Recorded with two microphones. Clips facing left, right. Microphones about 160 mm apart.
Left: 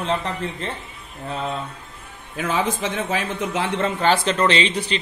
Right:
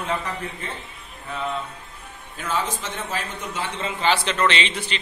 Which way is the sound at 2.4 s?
55° left (ahead or behind).